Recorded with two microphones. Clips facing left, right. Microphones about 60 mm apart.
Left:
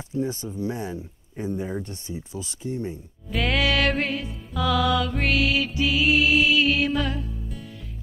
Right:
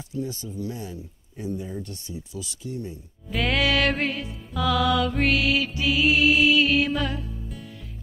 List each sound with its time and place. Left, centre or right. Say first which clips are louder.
0.1 s speech: left 4 dB; left
3.3 s music: even; centre